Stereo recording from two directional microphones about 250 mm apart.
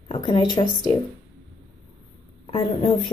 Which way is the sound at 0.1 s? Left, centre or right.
Centre.